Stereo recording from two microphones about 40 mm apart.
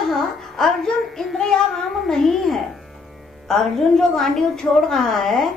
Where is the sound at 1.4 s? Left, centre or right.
Centre.